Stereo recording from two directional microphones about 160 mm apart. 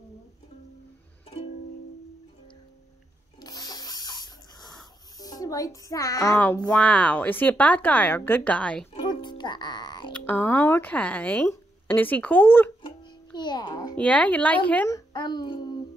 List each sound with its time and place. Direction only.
3.3 s a sound: 25° left (ahead or behind)
5.1 s a child's voice: 25° left (ahead or behind); by 8.8 s 5° left (ahead or behind)
8.9 s music: 25° left (ahead or behind)
10.1 s speech: 10° left (ahead or behind)
12.8 s music: 30° left (ahead or behind)
13.9 s speech: 5° left (ahead or behind)
14.9 s a sound: 25° left (ahead or behind)